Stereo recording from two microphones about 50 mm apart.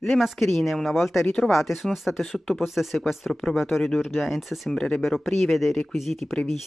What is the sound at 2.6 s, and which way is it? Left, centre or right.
Speech, centre.